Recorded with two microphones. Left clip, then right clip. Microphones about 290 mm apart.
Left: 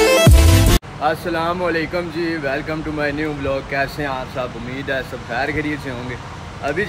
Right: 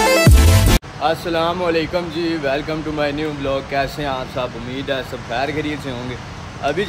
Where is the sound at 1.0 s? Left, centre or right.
Centre.